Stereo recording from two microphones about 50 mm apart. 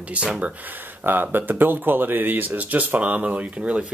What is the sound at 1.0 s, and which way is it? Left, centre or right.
Speech, right.